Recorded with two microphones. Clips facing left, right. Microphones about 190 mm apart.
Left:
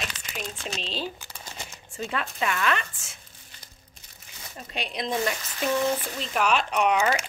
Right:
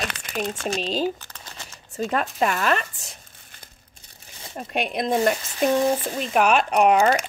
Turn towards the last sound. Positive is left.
turn(degrees=-40)  # may be behind; listen again after turning